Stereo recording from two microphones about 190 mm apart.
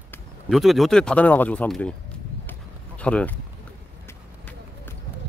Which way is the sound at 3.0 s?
5° left (ahead or behind).